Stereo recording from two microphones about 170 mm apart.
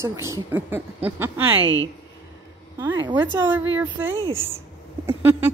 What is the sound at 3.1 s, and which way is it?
A woman's voice, 10° right (ahead or behind).